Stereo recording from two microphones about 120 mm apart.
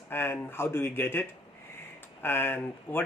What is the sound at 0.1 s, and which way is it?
Speech, 20° left (ahead or behind).